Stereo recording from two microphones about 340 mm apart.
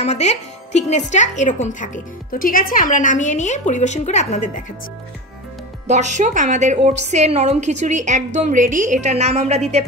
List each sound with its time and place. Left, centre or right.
0.0 s a woman's voice: centre
5.9 s a woman's voice: right